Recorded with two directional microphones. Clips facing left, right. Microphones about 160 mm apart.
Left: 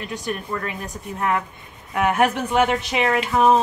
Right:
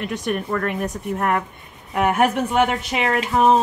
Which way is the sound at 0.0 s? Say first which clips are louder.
Right 4 dB; 60° right (ahead or behind).